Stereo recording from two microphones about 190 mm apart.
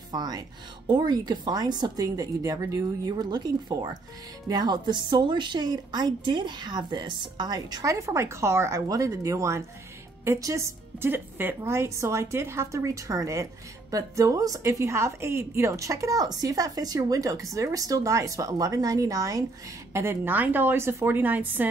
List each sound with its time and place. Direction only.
0.1 s a woman's voice: 20° right (ahead or behind)